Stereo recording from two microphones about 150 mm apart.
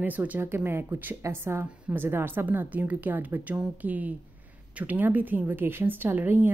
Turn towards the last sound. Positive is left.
turn(degrees=-10)  # may be behind; listen again after turning